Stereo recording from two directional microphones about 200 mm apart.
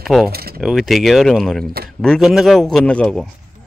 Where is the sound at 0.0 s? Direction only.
Centre (ahead or behind).